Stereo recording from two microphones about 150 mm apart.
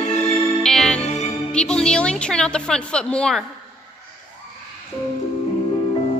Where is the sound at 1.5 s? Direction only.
5° left (ahead or behind).